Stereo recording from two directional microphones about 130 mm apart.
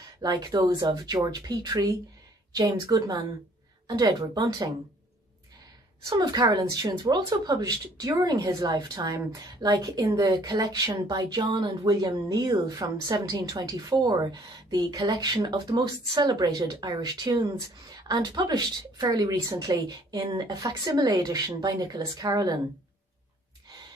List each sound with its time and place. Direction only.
0.2 s a woman's voice: 30° right (ahead or behind)
6.0 s a woman's voice: 30° right (ahead or behind)